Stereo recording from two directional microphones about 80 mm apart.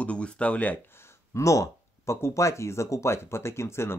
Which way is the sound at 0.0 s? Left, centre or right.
Centre.